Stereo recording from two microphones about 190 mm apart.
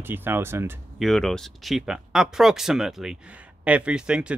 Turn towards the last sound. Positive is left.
turn(degrees=-5)  # may be behind; listen again after turning